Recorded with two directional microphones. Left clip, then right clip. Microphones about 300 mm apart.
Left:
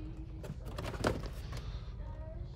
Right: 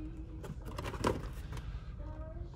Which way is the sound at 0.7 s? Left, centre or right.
Centre.